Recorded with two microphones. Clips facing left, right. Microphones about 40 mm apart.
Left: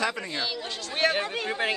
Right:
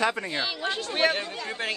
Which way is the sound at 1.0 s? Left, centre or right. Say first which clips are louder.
Even; centre.